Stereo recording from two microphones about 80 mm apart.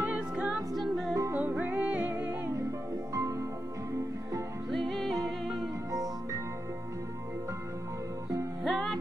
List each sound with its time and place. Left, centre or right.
0.1 s music: centre
0.7 s music: centre
1.3 s music: right
3.2 s music: right
4.6 s music: centre
5.9 s music: right
8.6 s music: centre